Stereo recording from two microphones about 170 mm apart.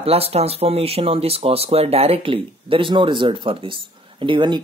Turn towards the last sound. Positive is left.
turn(degrees=-30)  # may be behind; listen again after turning